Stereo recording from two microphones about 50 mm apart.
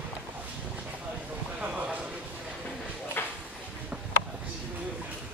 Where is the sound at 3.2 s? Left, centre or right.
Left.